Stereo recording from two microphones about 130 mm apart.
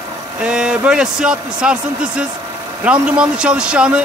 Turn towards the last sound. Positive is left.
turn(degrees=-10)  # may be behind; listen again after turning